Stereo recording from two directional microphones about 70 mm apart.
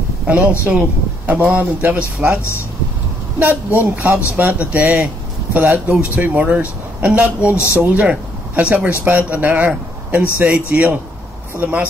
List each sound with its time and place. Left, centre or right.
0.3 s speech: right